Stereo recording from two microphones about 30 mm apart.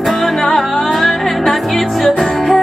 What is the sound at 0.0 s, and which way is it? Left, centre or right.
Music, centre.